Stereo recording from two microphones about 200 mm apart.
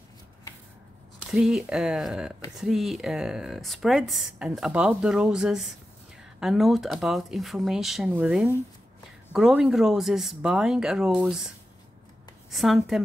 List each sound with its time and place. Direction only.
1.3 s a woman's voice: 5° right (ahead or behind)